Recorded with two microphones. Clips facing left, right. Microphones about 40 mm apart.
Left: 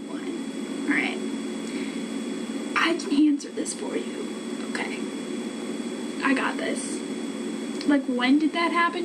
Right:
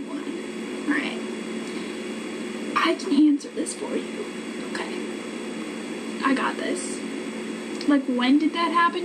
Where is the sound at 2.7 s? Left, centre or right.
Centre.